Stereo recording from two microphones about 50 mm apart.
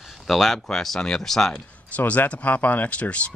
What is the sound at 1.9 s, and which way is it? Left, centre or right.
Speech, left.